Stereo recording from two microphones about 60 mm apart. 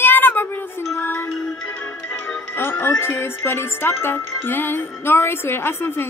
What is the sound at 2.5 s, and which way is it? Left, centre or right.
Music, left.